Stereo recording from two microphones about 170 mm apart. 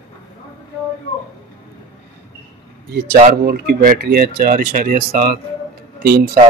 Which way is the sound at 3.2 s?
60° right (ahead or behind).